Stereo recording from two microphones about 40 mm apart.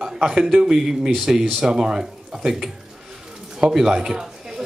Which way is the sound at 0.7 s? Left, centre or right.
Centre.